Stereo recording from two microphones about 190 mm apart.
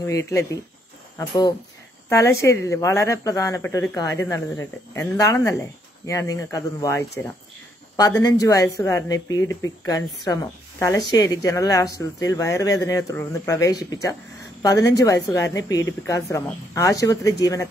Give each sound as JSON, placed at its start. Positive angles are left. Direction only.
{"t": 0.0, "sound": "a woman's voice", "side_deg": 15}